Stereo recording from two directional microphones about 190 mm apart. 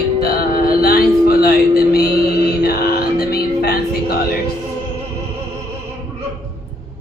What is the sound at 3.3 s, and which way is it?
Music, 55° left (ahead or behind).